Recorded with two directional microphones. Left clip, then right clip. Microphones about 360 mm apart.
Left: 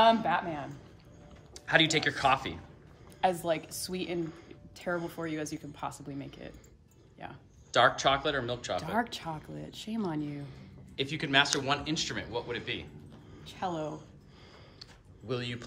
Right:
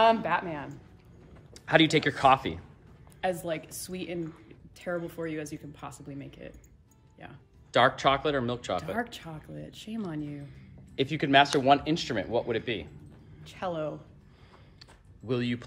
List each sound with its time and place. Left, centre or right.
0.0 s a woman's voice: centre
1.5 s speech: centre
3.2 s a woman's voice: centre
7.7 s speech: centre
8.9 s a woman's voice: centre
11.0 s speech: centre
13.4 s speech: centre
14.8 s a sound: centre